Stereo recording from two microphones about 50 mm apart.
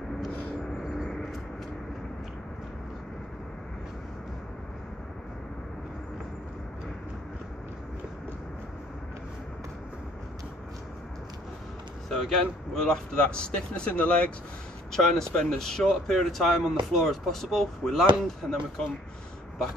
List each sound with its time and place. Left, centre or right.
0.8 s vehicle: centre
12.1 s vehicle: centre
12.7 s speech: centre
14.9 s speech: centre